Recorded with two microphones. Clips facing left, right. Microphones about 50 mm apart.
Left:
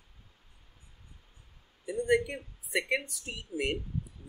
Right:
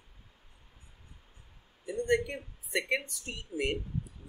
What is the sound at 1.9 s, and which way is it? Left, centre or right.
Speech, centre.